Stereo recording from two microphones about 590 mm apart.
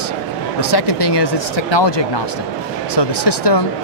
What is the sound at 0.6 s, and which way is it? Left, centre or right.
Speech, left.